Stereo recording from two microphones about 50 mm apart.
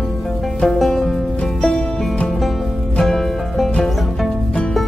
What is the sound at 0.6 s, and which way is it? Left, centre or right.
Music, centre.